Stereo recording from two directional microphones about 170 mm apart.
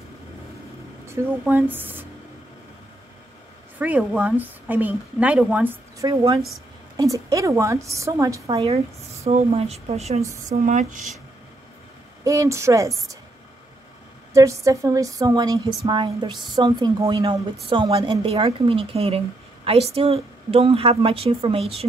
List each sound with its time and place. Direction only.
1.4 s a woman's voice: 10° right (ahead or behind)
3.8 s a woman's voice: 10° right (ahead or behind)
6.0 s a woman's voice: 25° right (ahead or behind)
8.5 s a woman's voice: 35° right (ahead or behind)
12.3 s a woman's voice: 20° right (ahead or behind)
14.3 s a woman's voice: 20° right (ahead or behind); by 21.8 s 35° right (ahead or behind)